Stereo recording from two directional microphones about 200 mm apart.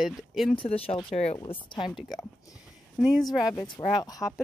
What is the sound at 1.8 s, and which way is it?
Speech, centre (ahead or behind).